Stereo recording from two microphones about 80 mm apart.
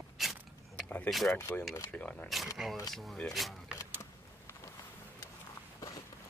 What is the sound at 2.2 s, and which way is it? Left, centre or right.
Speech, centre.